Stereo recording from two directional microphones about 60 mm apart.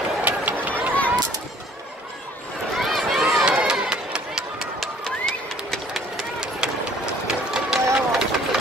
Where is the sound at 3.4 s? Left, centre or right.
Centre.